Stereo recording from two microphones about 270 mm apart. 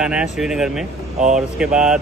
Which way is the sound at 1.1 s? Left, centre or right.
Right.